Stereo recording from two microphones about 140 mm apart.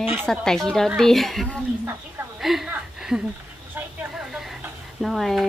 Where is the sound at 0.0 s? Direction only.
5° right (ahead or behind).